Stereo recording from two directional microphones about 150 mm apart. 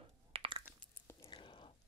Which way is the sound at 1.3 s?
35° left (ahead or behind).